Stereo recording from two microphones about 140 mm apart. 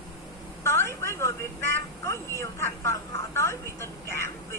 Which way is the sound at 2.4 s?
20° left (ahead or behind).